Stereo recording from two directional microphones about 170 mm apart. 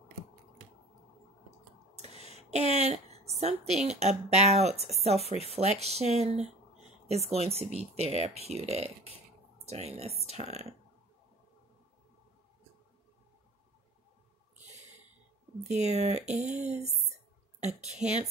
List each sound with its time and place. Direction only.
2.0 s a woman's voice: 40° right (ahead or behind)
5.2 s speech: 35° left (ahead or behind)
5.5 s speech: 40° right (ahead or behind)
15.6 s speech: 40° right (ahead or behind)
18.0 s speech: centre (ahead or behind)